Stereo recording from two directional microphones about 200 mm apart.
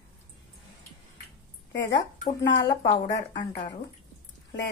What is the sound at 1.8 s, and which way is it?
Speech, 20° left (ahead or behind).